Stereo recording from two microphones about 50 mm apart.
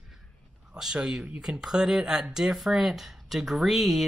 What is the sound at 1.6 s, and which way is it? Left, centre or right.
Speech, centre.